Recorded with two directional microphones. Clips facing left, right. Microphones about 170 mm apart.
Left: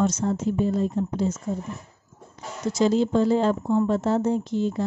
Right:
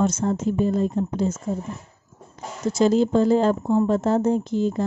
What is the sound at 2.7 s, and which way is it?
Speech, 50° right (ahead or behind).